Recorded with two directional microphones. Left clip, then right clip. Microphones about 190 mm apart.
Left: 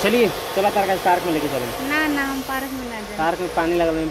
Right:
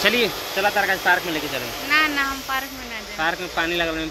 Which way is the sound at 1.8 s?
20° left (ahead or behind).